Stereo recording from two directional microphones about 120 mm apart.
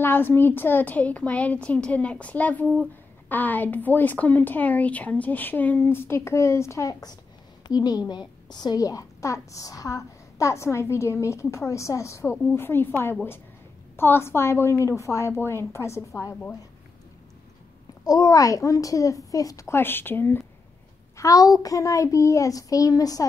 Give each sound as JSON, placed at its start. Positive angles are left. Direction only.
{"t": 0.0, "sound": "a woman's voice", "side_deg": 15}
{"t": 18.0, "sound": "a woman's voice", "side_deg": 30}